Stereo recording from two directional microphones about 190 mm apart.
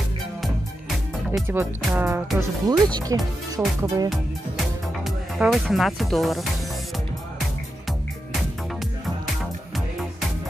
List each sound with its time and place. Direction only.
1.5 s speech: 10° right (ahead or behind)
5.0 s speech: centre (ahead or behind)